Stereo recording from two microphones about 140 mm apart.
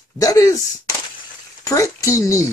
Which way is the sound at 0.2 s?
25° left (ahead or behind).